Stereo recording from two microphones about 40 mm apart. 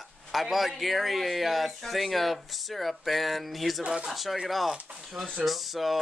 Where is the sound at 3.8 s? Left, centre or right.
Right.